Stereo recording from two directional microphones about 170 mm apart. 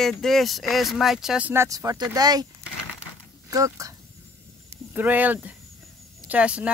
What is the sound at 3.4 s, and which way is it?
Speech, 20° right (ahead or behind).